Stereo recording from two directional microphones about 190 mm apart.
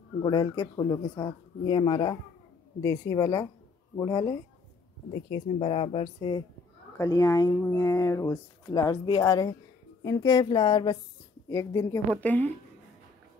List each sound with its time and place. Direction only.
0.2 s speech: 20° left (ahead or behind)